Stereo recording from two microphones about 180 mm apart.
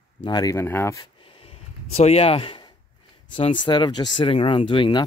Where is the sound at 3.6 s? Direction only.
25° left (ahead or behind).